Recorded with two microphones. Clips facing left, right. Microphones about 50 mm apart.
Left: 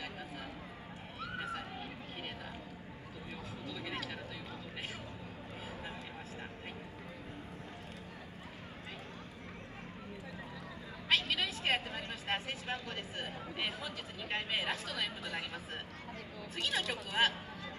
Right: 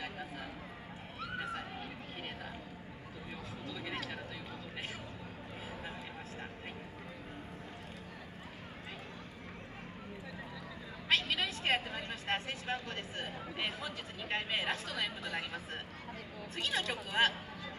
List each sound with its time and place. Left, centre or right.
1.2 s neigh: centre
3.6 s a sound: centre
11.1 s speech: centre